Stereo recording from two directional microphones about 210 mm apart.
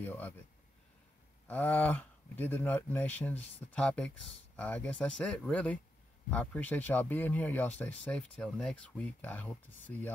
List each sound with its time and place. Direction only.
0.0 s speech: 10° left (ahead or behind)
1.5 s speech: 10° left (ahead or behind)